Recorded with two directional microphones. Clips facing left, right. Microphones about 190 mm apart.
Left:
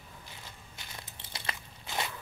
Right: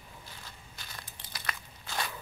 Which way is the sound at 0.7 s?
25° left (ahead or behind).